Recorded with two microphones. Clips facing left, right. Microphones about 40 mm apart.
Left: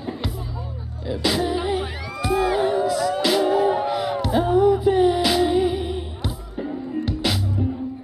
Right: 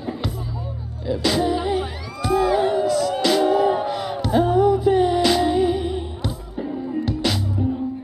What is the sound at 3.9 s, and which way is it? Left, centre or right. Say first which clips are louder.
Music: left 1 dB; centre.